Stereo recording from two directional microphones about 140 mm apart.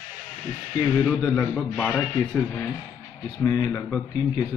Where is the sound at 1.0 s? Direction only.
5° left (ahead or behind).